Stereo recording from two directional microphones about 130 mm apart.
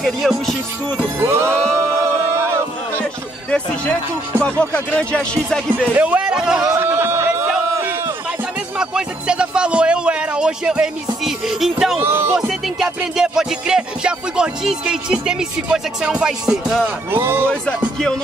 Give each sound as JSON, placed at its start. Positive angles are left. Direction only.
{"t": 0.0, "sound": "music", "side_deg": 0}
{"t": 0.9, "sound": "music", "side_deg": -20}
{"t": 1.6, "sound": "a sound", "side_deg": -20}
{"t": 3.4, "sound": "speech", "side_deg": 10}
{"t": 5.9, "sound": "speech", "side_deg": -10}
{"t": 6.7, "sound": "a sound", "side_deg": -20}
{"t": 7.4, "sound": "a sound", "side_deg": -10}
{"t": 8.7, "sound": "speech", "side_deg": -5}
{"t": 12.0, "sound": "speech", "side_deg": -15}
{"t": 12.4, "sound": "music", "side_deg": 0}
{"t": 17.1, "sound": "speech", "side_deg": -20}